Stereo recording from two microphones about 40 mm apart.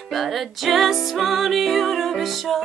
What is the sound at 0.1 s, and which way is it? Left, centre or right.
Music, centre.